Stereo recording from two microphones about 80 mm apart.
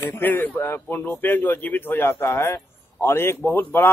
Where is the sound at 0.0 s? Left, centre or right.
Left.